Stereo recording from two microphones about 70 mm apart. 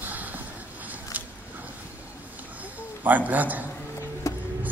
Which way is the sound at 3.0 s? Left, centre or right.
Right.